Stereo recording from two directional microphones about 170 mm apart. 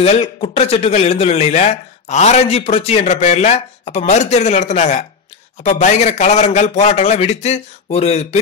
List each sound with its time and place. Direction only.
0.0 s speech: 35° left (ahead or behind)